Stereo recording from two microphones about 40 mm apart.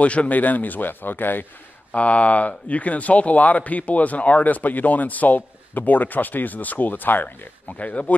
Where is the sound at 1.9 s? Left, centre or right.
Left.